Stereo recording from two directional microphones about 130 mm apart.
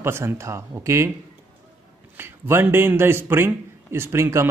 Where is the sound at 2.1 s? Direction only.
20° right (ahead or behind).